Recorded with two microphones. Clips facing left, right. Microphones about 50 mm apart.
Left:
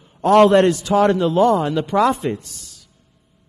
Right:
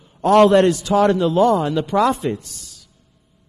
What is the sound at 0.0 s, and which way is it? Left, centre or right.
A man's voice, left.